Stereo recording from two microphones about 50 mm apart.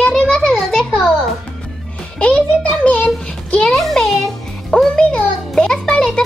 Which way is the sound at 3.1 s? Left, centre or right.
Centre.